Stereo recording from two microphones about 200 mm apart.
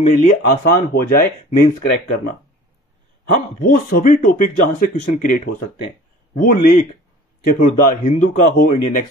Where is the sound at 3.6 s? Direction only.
40° left (ahead or behind).